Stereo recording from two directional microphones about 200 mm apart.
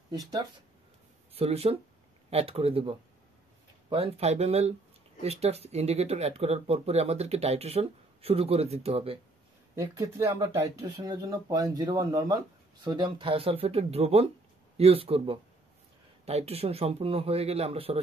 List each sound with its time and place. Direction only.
0.1 s speech: 20° right (ahead or behind)
1.3 s speech: 30° right (ahead or behind)
9.8 s speech: 15° right (ahead or behind)